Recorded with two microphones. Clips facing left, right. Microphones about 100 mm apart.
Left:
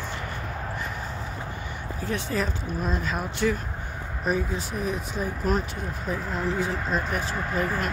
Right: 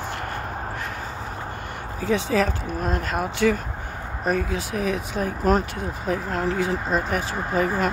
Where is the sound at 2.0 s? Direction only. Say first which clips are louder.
Right 7 dB; 90° right; by 7.4 s 70° right (ahead or behind).